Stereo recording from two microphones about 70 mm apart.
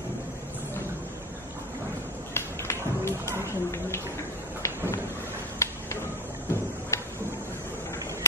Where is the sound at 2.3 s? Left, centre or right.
Left.